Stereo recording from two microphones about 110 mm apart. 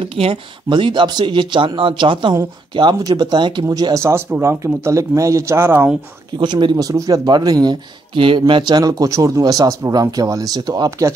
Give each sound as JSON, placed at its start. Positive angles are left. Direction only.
{"t": 0.1, "sound": "speech", "side_deg": -55}
{"t": 3.6, "sound": "speech", "side_deg": -35}
{"t": 6.4, "sound": "speech", "side_deg": -45}